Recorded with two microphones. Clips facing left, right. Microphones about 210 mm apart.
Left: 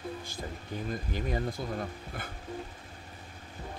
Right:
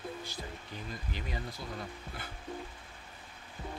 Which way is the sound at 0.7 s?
50° left (ahead or behind).